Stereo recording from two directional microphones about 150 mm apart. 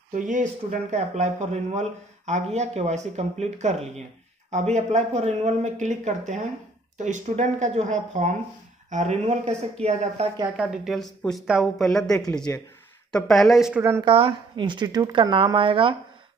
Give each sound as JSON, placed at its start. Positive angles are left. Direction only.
{"t": 0.1, "sound": "speech", "side_deg": -55}
{"t": 10.6, "sound": "speech", "side_deg": -5}
{"t": 14.0, "sound": "speech", "side_deg": -35}